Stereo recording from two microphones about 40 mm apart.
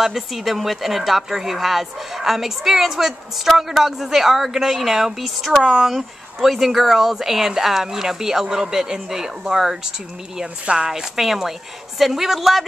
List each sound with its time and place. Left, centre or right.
0.0 s speech: centre
10.6 s a woman's voice: right
10.9 s speech: centre